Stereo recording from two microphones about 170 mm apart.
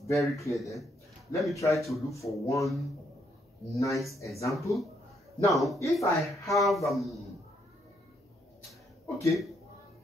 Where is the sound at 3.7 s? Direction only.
20° left (ahead or behind).